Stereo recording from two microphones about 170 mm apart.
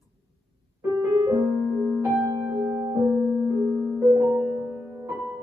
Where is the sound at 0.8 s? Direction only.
20° right (ahead or behind).